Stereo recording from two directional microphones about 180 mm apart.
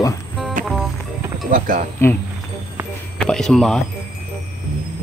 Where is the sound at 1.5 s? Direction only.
50° right (ahead or behind).